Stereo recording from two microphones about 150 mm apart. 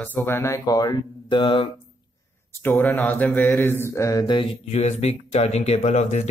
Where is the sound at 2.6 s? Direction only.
15° left (ahead or behind); by 4.8 s 35° left (ahead or behind).